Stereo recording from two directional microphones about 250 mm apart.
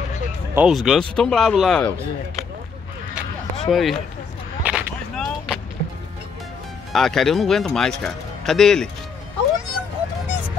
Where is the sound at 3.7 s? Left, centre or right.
Centre.